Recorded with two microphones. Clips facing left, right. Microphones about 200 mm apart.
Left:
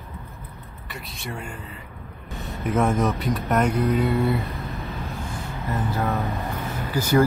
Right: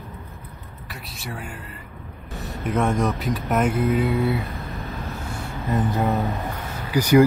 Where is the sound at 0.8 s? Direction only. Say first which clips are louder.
Left 1 dB; centre (ahead or behind).